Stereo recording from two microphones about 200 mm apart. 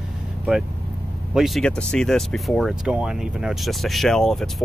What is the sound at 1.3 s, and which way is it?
Speech, centre (ahead or behind).